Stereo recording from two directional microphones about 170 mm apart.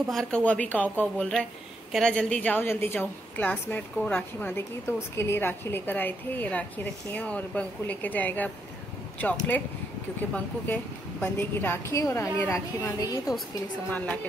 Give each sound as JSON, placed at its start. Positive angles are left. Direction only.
{"t": 0.1, "sound": "speech", "side_deg": 5}